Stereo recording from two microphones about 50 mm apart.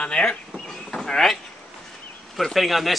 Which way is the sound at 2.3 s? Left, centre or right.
Centre.